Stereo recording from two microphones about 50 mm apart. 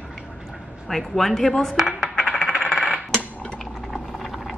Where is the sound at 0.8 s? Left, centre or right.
Centre.